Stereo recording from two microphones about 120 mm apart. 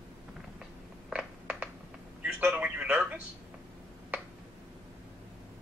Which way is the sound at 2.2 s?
10° right (ahead or behind).